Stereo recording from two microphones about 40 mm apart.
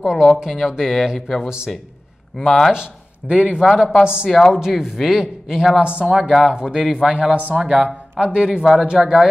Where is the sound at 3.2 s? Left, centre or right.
Right.